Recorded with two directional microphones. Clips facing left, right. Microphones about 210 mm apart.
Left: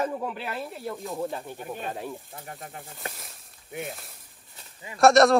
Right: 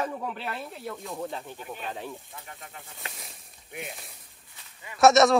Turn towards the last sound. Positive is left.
turn(degrees=0)  # may be behind; listen again after turning